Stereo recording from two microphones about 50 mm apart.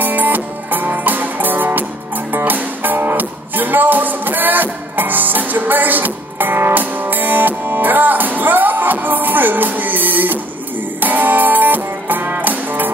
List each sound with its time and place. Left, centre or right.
0.0 s music: right